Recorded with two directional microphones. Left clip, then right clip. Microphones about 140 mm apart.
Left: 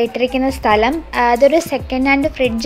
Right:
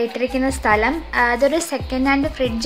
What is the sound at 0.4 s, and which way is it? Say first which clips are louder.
A woman's voice: left 3 dB; 40° left (ahead or behind).